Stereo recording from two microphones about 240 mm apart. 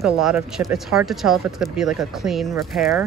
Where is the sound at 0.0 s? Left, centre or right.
Centre.